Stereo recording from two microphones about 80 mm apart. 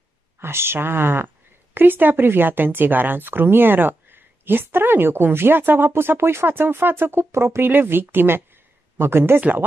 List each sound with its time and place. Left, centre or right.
0.4 s speech: right